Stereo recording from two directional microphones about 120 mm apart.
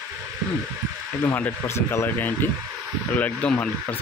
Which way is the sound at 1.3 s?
15° left (ahead or behind).